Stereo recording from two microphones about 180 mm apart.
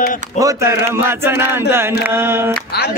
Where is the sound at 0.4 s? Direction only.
15° right (ahead or behind).